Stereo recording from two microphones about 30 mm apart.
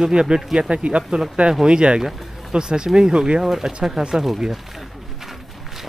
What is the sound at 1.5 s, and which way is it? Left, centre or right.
Speech, centre.